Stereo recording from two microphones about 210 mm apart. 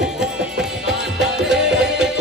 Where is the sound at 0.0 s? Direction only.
5° right (ahead or behind).